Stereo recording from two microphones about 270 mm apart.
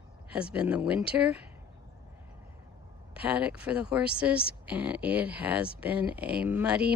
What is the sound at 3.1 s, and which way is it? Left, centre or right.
Speech, centre.